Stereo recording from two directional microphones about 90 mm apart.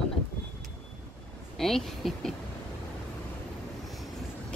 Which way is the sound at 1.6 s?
5° left (ahead or behind).